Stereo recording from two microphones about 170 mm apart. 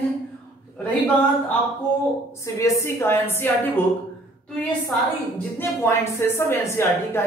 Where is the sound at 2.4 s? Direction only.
15° left (ahead or behind).